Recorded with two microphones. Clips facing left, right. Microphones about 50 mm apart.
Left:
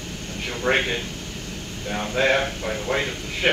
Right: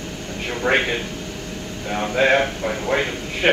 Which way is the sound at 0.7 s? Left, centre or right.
Right.